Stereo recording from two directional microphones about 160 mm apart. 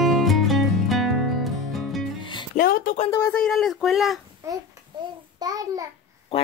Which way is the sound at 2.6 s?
60° left (ahead or behind).